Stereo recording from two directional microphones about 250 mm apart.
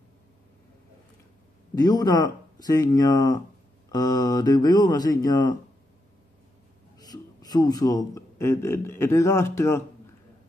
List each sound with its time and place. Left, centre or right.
1.8 s speech: centre
7.0 s a man's voice: centre